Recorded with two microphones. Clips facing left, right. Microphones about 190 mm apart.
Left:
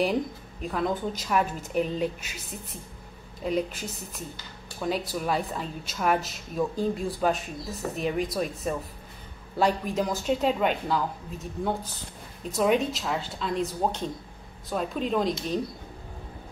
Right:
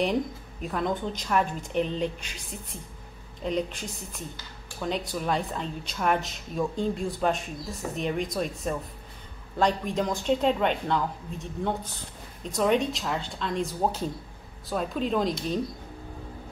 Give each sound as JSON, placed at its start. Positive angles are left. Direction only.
{"t": 0.0, "sound": "speech", "side_deg": 0}